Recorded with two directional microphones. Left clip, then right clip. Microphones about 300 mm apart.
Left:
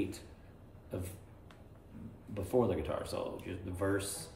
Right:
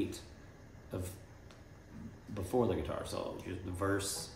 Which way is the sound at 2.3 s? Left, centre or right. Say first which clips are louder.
Left 1 dB; centre.